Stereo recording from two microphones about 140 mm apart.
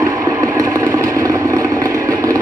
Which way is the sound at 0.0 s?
25° right (ahead or behind).